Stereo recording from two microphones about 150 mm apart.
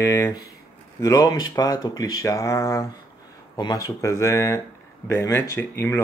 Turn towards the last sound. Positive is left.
turn(degrees=15)  # may be behind; listen again after turning